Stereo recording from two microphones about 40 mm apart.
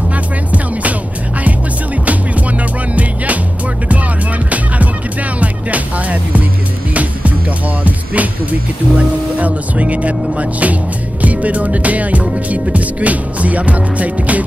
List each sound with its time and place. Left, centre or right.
0.1 s music: right
5.4 s music: right